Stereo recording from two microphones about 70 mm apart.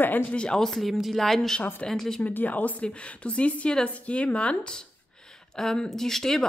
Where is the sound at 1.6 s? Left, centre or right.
Left.